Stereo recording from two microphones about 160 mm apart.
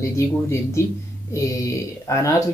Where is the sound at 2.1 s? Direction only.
20° left (ahead or behind).